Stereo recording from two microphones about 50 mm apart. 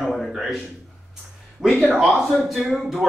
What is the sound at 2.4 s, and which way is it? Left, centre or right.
Speech, centre.